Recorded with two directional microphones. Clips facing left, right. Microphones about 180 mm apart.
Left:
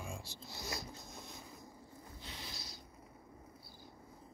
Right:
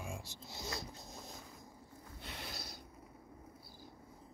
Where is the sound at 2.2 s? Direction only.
60° right (ahead or behind).